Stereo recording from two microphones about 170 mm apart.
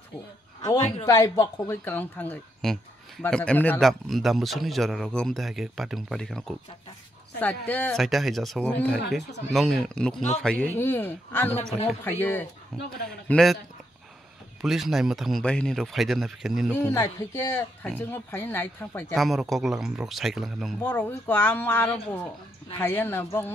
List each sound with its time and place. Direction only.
0.7 s speech: 40° left (ahead or behind)
1.0 s speech: 20° left (ahead or behind)
12.7 s speech: centre (ahead or behind)
14.6 s speech: centre (ahead or behind)
16.7 s speech: 15° left (ahead or behind)
19.1 s speech: centre (ahead or behind)
20.8 s speech: 10° left (ahead or behind)